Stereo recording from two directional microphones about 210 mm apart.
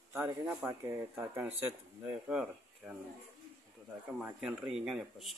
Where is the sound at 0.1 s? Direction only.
10° right (ahead or behind).